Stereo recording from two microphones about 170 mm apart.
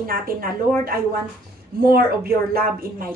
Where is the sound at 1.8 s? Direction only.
60° right (ahead or behind).